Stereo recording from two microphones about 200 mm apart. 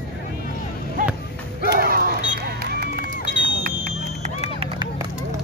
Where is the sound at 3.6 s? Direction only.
40° right (ahead or behind).